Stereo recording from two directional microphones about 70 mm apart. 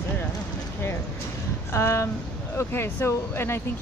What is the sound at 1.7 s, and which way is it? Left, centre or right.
Speech, left.